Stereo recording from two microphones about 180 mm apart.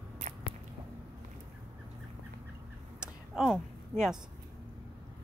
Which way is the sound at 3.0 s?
5° right (ahead or behind).